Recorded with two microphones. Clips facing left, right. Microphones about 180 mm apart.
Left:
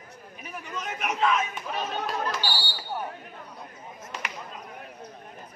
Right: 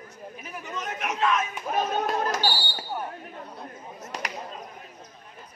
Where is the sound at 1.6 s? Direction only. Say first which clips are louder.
Right 5 dB; 45° right (ahead or behind).